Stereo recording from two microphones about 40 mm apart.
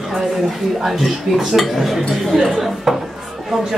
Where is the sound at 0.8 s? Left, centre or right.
Centre.